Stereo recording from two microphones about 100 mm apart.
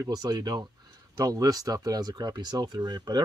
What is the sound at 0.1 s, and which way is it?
Speech, 40° right (ahead or behind).